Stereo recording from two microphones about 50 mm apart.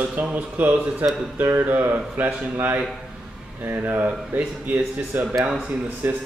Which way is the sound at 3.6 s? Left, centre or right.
Right.